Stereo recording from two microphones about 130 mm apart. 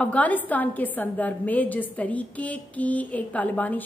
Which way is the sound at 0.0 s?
10° left (ahead or behind).